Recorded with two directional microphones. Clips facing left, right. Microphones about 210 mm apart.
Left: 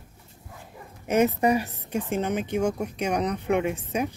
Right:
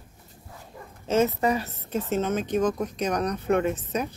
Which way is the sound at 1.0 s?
15° left (ahead or behind).